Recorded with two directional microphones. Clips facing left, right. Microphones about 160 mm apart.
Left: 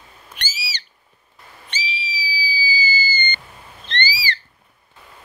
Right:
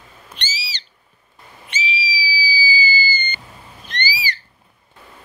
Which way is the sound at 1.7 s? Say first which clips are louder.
Right 5 dB; 5° right (ahead or behind).